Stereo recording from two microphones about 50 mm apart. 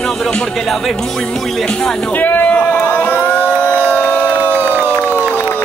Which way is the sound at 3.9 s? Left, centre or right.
Left.